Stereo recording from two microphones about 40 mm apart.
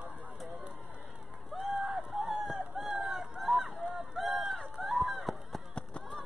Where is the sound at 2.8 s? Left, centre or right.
Centre.